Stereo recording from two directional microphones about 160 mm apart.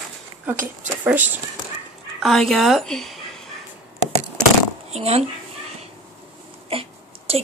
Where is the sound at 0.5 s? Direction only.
10° right (ahead or behind).